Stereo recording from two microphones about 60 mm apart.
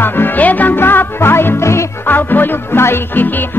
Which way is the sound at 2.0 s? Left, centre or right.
Left.